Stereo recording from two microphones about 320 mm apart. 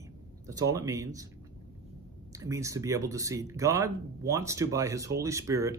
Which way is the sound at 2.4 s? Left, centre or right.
Centre.